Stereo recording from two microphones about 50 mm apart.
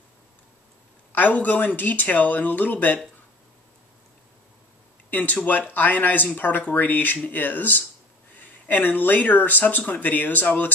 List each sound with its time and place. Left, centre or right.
1.1 s speech: left
5.1 s speech: left